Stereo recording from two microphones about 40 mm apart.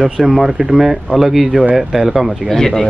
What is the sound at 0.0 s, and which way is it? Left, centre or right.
Speech, centre.